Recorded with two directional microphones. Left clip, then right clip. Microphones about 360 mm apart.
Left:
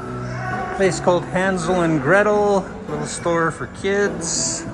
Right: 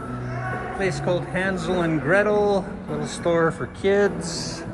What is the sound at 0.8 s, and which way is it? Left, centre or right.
Speech, centre.